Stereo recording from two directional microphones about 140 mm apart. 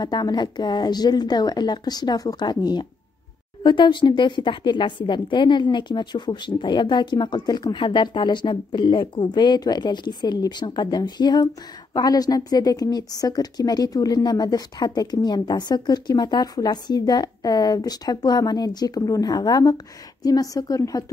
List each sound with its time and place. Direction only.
0.0 s a woman's voice: 30° left (ahead or behind)